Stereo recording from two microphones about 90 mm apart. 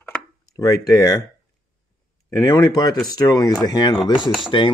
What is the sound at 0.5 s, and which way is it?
Speech, 40° left (ahead or behind).